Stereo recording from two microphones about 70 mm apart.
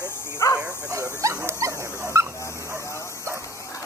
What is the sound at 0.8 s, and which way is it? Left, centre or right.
Speech, right.